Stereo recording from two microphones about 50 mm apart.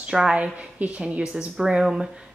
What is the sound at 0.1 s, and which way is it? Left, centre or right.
Speech, centre.